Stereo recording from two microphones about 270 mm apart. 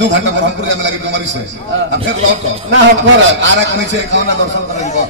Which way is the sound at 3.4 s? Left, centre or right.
Right.